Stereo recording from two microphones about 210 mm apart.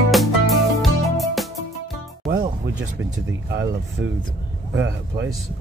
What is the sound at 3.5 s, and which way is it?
Speech, 60° right (ahead or behind).